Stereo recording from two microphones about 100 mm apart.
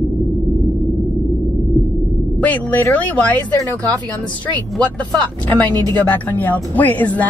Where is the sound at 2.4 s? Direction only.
15° left (ahead or behind).